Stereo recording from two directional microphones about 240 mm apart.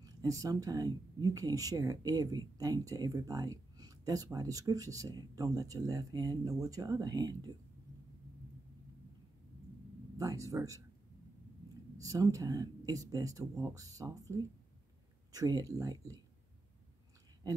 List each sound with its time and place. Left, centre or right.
0.0 s speech: centre
10.1 s speech: centre
12.0 s speech: centre
15.3 s speech: centre